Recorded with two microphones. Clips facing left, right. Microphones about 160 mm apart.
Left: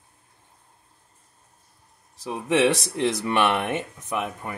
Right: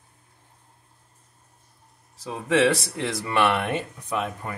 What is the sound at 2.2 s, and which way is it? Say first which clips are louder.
Speech: even; 20° left (ahead or behind).